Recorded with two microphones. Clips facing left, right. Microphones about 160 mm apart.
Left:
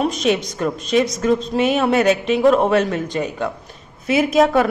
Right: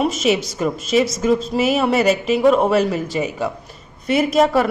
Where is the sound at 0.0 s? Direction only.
5° right (ahead or behind).